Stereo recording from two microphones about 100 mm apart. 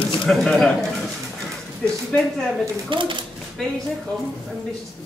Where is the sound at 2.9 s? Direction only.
55° right (ahead or behind).